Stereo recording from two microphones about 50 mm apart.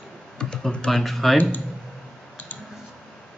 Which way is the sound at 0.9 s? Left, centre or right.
Centre.